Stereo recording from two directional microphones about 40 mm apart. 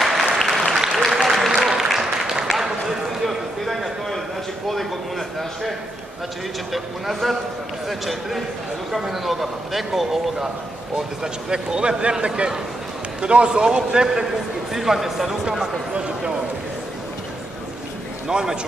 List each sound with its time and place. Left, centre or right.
0.0 s applause: centre
2.4 s a sound: centre
6.7 s a man's voice: centre
11.0 s speech: centre
14.7 s speech: centre
18.3 s speech: centre